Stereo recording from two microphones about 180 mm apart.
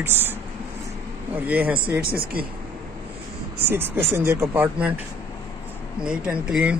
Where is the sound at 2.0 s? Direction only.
55° right (ahead or behind).